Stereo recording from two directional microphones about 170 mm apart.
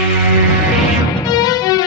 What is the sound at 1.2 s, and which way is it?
Music, 20° left (ahead or behind).